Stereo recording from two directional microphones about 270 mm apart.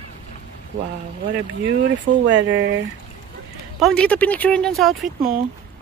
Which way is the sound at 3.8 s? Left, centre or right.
Centre.